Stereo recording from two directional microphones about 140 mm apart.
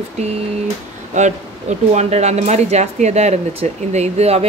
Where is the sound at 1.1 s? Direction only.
55° right (ahead or behind).